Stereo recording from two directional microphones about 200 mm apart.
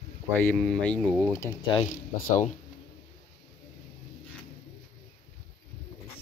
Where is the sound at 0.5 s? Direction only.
5° left (ahead or behind).